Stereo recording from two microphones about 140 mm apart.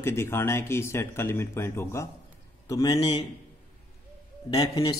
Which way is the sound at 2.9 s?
35° left (ahead or behind).